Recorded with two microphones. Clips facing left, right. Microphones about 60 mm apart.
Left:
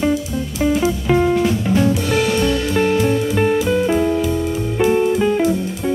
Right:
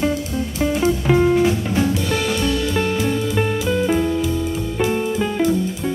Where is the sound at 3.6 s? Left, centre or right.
Centre.